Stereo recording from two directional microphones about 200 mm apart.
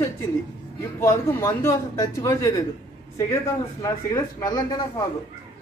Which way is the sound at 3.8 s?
20° left (ahead or behind).